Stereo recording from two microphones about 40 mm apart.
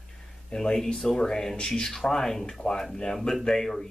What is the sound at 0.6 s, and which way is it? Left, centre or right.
Speech, centre.